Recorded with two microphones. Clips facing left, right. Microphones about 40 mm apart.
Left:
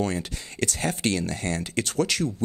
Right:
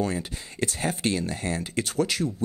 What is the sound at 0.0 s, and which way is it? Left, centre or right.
Speech, left.